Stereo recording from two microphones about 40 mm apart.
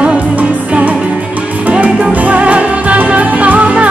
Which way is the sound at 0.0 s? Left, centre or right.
Right.